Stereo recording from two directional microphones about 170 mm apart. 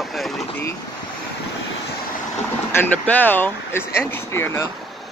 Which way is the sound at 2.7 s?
10° left (ahead or behind).